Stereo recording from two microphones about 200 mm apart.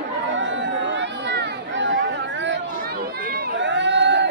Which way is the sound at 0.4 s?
65° right (ahead or behind).